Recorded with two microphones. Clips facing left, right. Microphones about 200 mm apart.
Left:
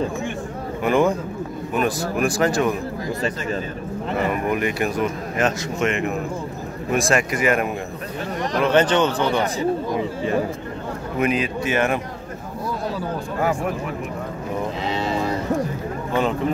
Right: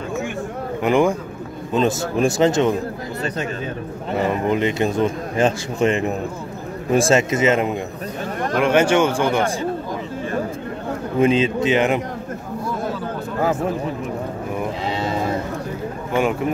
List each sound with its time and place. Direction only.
0.8 s speech: 15° right (ahead or behind)
4.2 s speech: 25° right (ahead or behind)
8.6 s speech: 10° right (ahead or behind)
11.1 s speech: 25° right (ahead or behind)
13.4 s speech: 20° right (ahead or behind)
16.1 s speech: 10° right (ahead or behind)